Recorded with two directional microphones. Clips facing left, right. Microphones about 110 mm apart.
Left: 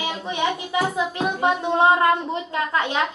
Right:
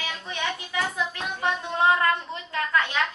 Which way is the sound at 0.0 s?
15° left (ahead or behind).